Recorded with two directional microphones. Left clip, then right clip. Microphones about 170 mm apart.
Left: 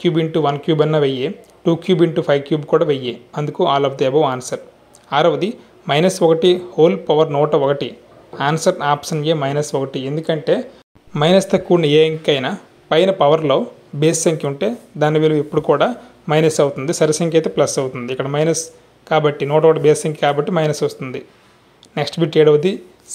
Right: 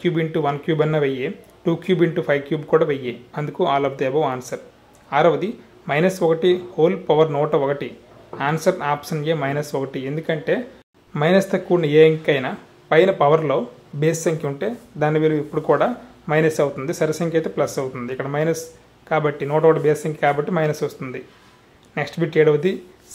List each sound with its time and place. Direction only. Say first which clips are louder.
0.0 s speech: left 4 dB; 20° left (ahead or behind)